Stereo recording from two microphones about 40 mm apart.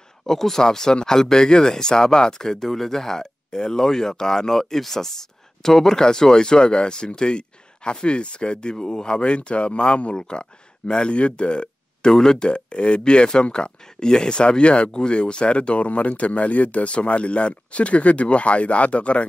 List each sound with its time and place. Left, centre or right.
0.3 s speech: centre; by 19.2 s left